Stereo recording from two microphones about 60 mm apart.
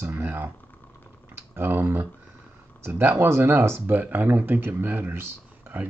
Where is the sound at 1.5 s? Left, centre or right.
Right.